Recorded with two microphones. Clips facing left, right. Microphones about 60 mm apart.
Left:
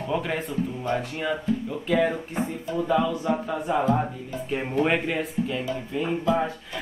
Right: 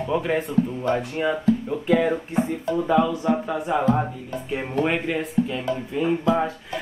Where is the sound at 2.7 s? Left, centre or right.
Centre.